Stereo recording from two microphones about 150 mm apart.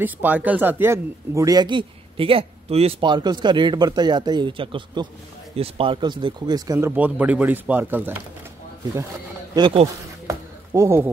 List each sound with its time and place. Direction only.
0.0 s a man's voice: 10° right (ahead or behind)
7.0 s speech: 10° right (ahead or behind)
9.6 s speech: 35° right (ahead or behind)
10.2 s a sound: 20° right (ahead or behind)